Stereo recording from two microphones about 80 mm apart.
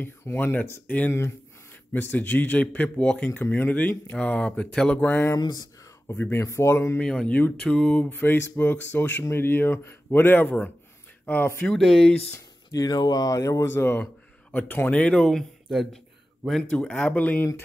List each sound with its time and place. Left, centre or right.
0.0 s speech: left
5.3 s speech: left
6.1 s speech: left
6.4 s speech: left
7.0 s speech: centre
8.1 s speech: left
11.6 s speech: centre
12.7 s speech: left
14.5 s speech: left
15.2 s speech: centre
16.7 s speech: centre